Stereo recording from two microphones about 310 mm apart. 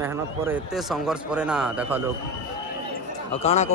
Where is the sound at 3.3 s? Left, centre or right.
Centre.